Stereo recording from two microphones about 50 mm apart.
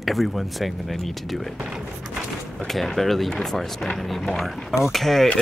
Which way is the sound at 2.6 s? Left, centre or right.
Centre.